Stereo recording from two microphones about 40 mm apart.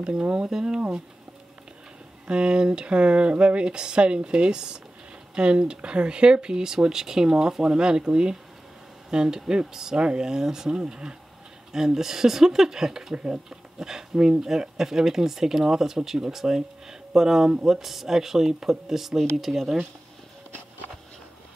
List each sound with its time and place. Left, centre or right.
0.0 s speech: right
0.7 s speech: right
2.2 s speech: right
10.7 s speech: right
11.7 s speech: centre
13.1 s speech: right
13.5 s speech: centre